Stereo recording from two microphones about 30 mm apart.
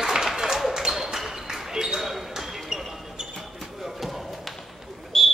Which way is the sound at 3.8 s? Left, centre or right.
Centre.